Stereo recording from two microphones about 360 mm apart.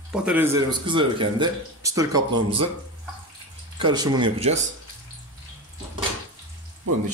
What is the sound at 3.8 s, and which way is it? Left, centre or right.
Speech, centre.